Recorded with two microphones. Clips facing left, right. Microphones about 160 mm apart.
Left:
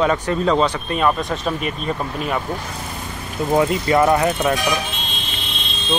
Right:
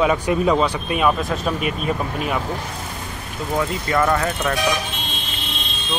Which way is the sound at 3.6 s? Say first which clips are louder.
Left 4 dB; 20° left (ahead or behind).